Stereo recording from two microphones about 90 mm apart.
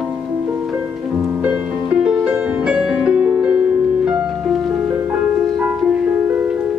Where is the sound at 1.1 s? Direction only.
10° right (ahead or behind).